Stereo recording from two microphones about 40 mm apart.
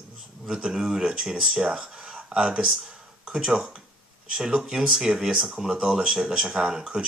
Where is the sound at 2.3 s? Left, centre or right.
Right.